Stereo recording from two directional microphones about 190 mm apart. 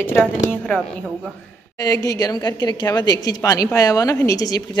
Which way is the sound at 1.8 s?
20° left (ahead or behind).